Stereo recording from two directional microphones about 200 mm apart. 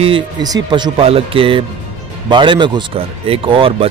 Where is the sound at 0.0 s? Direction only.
25° right (ahead or behind).